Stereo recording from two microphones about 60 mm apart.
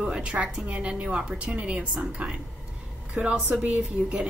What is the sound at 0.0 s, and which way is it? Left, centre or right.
A woman's voice, centre.